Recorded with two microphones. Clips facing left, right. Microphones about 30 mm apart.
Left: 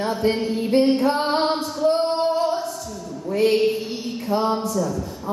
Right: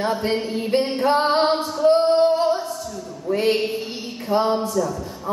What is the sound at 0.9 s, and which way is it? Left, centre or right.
Music, right.